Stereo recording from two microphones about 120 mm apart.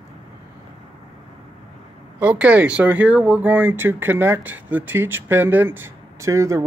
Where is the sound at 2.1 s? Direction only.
10° right (ahead or behind).